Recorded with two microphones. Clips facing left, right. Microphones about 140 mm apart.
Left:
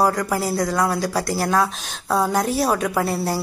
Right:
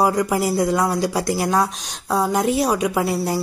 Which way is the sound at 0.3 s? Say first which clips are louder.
Right 3 dB; 10° right (ahead or behind).